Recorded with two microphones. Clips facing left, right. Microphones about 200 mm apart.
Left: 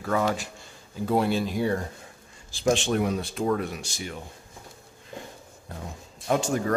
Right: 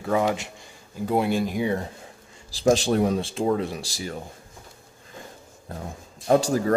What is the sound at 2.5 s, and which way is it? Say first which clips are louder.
Speech: right 4 dB; 35° right (ahead or behind).